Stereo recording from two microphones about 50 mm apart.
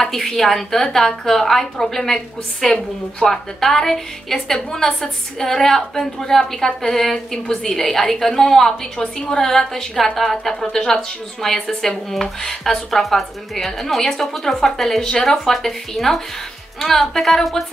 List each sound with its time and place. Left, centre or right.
0.0 s a woman's voice: centre
9.0 s a woman's voice: left
9.4 s a woman's voice: centre